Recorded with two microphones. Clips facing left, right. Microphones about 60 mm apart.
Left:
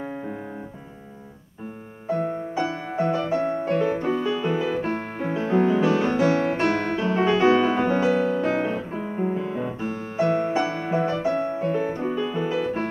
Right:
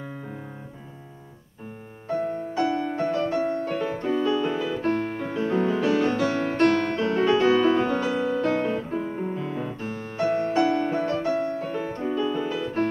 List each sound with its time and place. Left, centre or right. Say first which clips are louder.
2.2 s music: right 1 dB; centre